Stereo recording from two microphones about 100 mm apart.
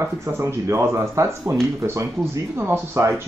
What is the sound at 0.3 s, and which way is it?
Speech, 25° right (ahead or behind).